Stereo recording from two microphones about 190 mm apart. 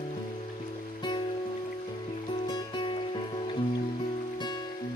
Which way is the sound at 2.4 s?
25° left (ahead or behind).